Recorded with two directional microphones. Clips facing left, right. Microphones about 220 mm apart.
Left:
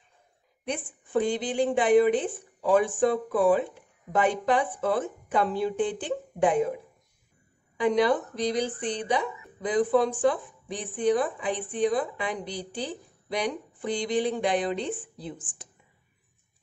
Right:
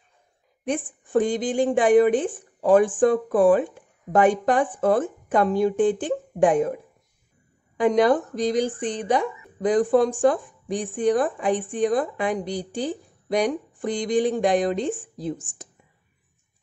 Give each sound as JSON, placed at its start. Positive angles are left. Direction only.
{"t": 0.7, "sound": "a woman's voice", "side_deg": -45}